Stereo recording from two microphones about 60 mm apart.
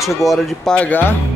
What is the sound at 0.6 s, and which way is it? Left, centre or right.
Speech, left.